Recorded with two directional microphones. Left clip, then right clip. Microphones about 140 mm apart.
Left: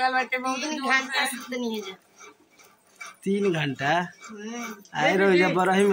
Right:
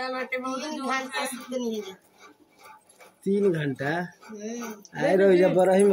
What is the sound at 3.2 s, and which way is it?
Speech, 10° left (ahead or behind).